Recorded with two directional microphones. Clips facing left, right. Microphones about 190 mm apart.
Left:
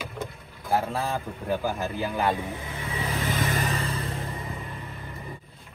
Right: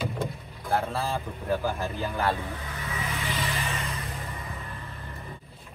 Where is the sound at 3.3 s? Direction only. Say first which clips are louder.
Left 5 dB; 50° left (ahead or behind).